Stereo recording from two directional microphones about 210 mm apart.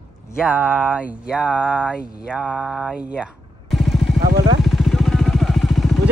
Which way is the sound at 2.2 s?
5° right (ahead or behind).